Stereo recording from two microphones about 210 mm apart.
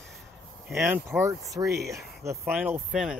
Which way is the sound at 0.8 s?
10° right (ahead or behind).